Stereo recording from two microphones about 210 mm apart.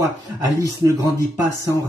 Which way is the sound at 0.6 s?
20° left (ahead or behind).